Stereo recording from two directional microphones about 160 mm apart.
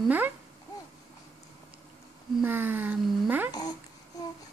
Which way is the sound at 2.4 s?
10° right (ahead or behind).